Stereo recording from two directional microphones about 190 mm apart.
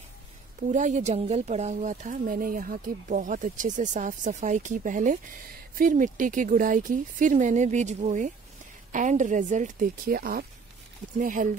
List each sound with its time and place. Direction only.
0.7 s a woman's voice: 40° right (ahead or behind)